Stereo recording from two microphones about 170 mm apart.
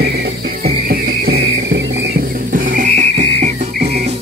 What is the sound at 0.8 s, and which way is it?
Music, 65° right (ahead or behind).